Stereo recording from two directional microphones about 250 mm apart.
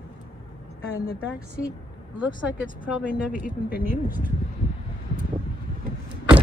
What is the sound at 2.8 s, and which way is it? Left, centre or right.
Speech, centre.